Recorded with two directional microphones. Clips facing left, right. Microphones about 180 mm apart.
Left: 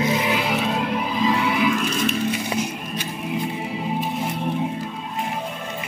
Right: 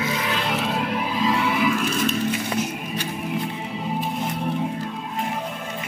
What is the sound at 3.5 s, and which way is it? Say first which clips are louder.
Music: left 2 dB; 10° left (ahead or behind).